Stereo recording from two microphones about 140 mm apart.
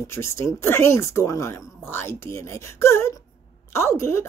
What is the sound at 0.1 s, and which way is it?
A woman's voice, 20° left (ahead or behind).